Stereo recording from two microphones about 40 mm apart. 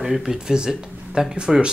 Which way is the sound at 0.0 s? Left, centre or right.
Centre.